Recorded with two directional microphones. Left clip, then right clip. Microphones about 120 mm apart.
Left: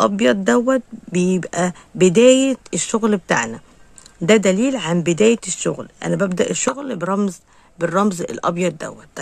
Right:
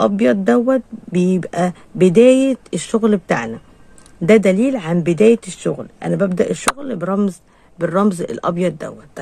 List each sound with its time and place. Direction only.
0.0 s speech: 35° left (ahead or behind)